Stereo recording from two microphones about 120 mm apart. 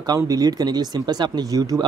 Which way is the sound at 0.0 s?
30° right (ahead or behind).